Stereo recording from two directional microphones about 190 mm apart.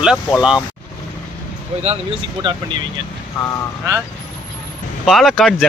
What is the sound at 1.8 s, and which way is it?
Speech, 30° right (ahead or behind).